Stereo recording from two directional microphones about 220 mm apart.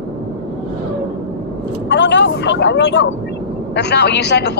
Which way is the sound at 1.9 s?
55° left (ahead or behind).